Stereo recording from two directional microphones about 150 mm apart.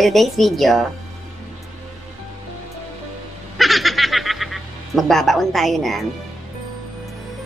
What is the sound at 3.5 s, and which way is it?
Snicker, centre (ahead or behind).